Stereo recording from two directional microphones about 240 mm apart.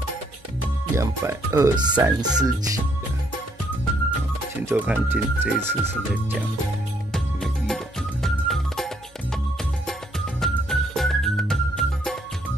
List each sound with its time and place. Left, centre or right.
0.9 s speech: centre
4.6 s speech: centre
7.1 s music: centre
10.4 s music: centre